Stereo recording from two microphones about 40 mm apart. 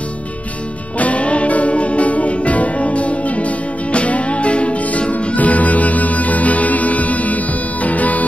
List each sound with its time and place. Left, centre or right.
0.9 s music: left